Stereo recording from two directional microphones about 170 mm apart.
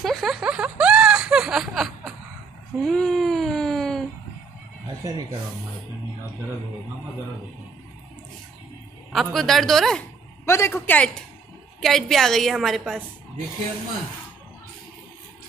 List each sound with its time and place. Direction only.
0.0 s a sound: centre (ahead or behind)
5.0 s speech: 20° right (ahead or behind)
9.1 s a woman's voice: centre (ahead or behind)
10.4 s a man's voice: 15° left (ahead or behind)
11.8 s a woman's voice: centre (ahead or behind)